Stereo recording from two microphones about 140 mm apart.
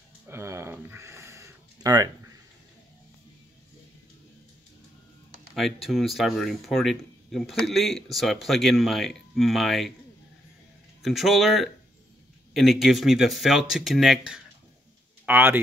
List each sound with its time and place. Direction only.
0.3 s a sound: 20° right (ahead or behind)
5.5 s speech: centre (ahead or behind)
11.0 s speech: centre (ahead or behind)
15.2 s a man's voice: 15° right (ahead or behind)